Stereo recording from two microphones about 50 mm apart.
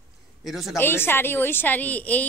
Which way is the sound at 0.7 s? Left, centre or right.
Left.